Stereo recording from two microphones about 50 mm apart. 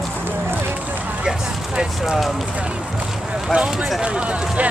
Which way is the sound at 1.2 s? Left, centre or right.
Centre.